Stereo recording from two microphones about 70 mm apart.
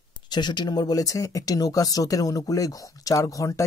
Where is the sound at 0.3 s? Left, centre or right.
Left.